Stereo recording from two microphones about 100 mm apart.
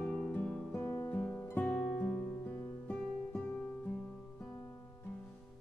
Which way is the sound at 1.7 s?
10° left (ahead or behind).